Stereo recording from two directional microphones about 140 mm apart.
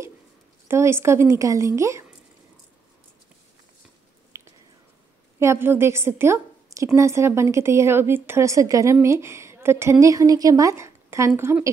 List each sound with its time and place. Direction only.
0.7 s a woman's voice: 20° right (ahead or behind)
4.3 s a sound: 20° right (ahead or behind)
5.4 s a woman's voice: 15° right (ahead or behind)